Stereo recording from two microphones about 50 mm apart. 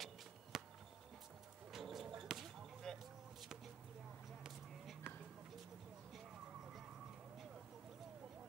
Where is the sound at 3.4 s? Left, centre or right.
Centre.